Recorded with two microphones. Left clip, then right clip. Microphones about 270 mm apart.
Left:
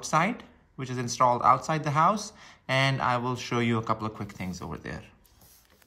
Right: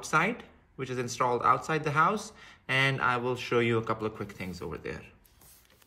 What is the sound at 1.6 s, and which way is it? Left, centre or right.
Speech, centre.